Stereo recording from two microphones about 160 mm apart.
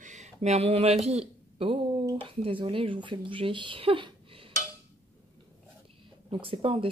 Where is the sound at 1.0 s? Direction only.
40° right (ahead or behind).